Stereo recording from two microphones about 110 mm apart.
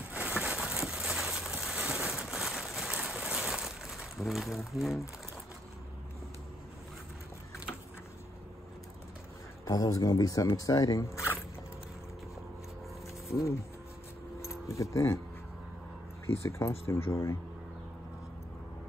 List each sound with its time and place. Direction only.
0.4 s a sound: 5° right (ahead or behind)
4.3 s speech: centre (ahead or behind)
9.7 s speech: 30° left (ahead or behind)
13.3 s speech: 25° left (ahead or behind)
14.4 s keys jangling: 25° left (ahead or behind)
16.3 s speech: 25° left (ahead or behind)